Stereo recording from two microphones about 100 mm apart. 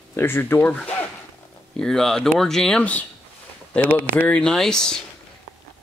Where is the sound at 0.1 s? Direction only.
20° left (ahead or behind).